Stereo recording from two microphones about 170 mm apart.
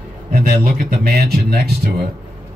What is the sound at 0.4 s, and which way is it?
Speech, 65° right (ahead or behind).